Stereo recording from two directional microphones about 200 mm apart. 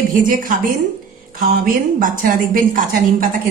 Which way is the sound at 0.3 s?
45° right (ahead or behind).